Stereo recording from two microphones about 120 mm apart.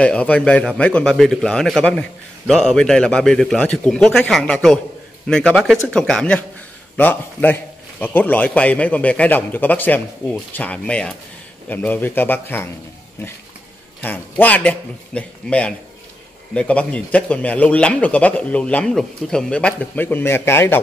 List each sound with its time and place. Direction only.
0.0 s a man's voice: 10° left (ahead or behind)
14.4 s speech: 15° left (ahead or behind)